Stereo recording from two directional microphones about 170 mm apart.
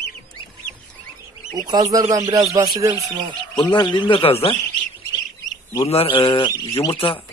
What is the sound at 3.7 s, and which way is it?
Speech, 25° left (ahead or behind).